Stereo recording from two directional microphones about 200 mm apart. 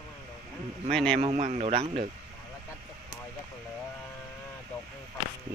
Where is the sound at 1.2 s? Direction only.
30° right (ahead or behind).